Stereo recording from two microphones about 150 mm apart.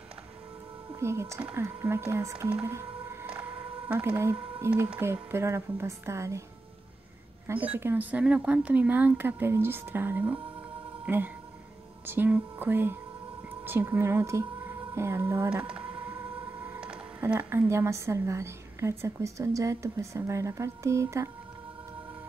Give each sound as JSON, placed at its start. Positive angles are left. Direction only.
{"t": 0.9, "sound": "speech", "side_deg": -20}
{"t": 2.5, "sound": "music", "side_deg": -15}
{"t": 4.8, "sound": "speech", "side_deg": -10}
{"t": 7.4, "sound": "speech", "side_deg": -10}